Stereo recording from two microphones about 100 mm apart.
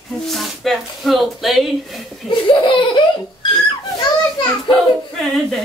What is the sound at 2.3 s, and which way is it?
Laughter, 55° left (ahead or behind).